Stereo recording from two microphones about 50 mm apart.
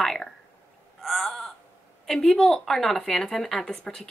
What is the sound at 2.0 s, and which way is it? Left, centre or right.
Speech, centre.